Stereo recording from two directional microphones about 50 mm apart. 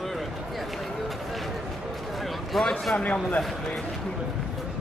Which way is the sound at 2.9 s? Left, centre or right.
Left.